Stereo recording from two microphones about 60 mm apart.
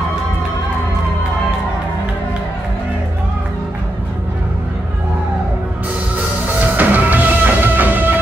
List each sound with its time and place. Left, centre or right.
6.6 s music: right